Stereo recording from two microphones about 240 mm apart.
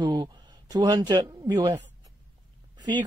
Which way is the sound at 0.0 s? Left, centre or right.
Centre.